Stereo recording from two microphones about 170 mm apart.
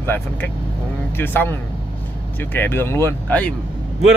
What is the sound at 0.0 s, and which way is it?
Speech, 10° left (ahead or behind).